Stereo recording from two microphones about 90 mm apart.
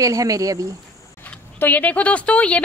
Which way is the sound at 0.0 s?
40° right (ahead or behind).